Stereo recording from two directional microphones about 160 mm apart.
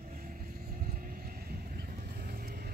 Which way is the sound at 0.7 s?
55° right (ahead or behind).